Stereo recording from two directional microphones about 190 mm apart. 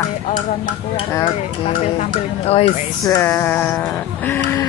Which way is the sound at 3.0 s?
15° left (ahead or behind).